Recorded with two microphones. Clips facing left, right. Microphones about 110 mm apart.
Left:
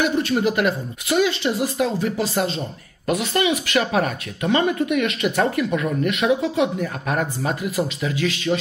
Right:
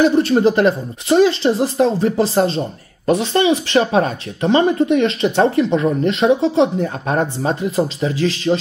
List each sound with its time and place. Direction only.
0.0 s a woman's voice: 35° right (ahead or behind)